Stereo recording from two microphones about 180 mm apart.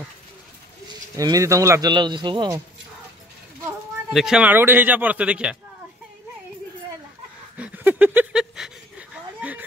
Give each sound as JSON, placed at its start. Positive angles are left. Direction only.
{"t": 0.8, "sound": "speech", "side_deg": -20}
{"t": 3.6, "sound": "speech", "side_deg": 0}
{"t": 7.5, "sound": "a sound", "side_deg": -10}